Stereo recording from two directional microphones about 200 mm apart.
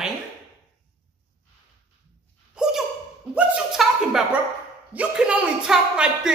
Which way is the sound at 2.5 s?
5° right (ahead or behind).